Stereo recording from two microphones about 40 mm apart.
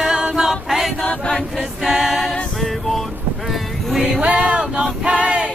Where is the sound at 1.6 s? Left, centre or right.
Centre.